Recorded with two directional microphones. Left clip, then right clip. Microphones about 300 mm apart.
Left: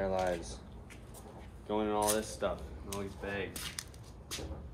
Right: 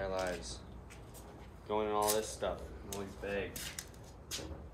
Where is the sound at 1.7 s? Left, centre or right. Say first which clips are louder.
Left 1 dB; left.